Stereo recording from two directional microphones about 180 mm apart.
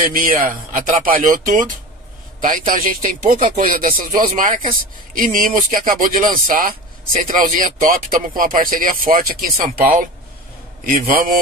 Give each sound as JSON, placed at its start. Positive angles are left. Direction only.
{"t": 0.0, "sound": "speech", "side_deg": -50}